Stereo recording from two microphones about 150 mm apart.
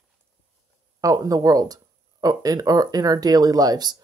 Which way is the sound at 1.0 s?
25° right (ahead or behind).